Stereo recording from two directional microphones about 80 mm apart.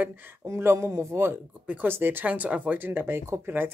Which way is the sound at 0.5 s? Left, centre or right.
Right.